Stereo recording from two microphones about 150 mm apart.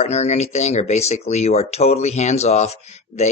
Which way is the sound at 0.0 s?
45° left (ahead or behind).